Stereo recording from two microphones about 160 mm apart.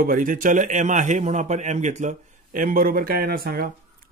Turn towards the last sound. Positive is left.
turn(degrees=-70)  # may be behind; listen again after turning